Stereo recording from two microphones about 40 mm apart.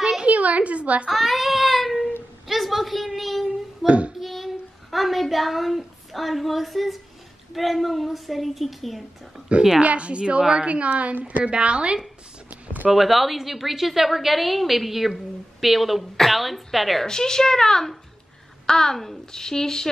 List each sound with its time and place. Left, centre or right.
0.0 s a sound: centre
0.3 s a woman's voice: right
1.0 s child singing: centre
2.4 s a sound: centre
3.8 s speech: right
4.2 s a sound: centre
6.1 s a woman's voice: centre
9.8 s speech: right
10.7 s a woman's voice: right
12.4 s a sound: right
12.9 s a woman's voice: centre
17.0 s a woman's voice: centre